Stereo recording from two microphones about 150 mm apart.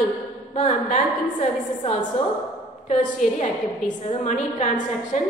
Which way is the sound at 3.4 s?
50° left (ahead or behind).